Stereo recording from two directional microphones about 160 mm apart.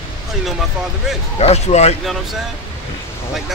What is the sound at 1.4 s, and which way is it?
Speech, 45° left (ahead or behind).